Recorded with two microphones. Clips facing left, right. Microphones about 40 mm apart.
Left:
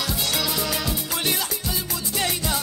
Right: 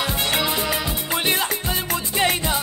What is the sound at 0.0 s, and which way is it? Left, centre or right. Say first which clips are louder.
Music: right 4 dB; right.